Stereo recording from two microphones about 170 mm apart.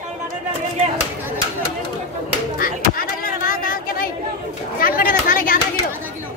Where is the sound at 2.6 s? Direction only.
55° left (ahead or behind).